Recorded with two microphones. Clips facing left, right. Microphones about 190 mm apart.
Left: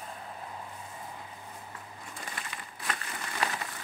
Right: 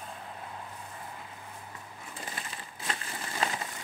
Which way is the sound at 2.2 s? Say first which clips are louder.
Right 1 dB; 30° right (ahead or behind).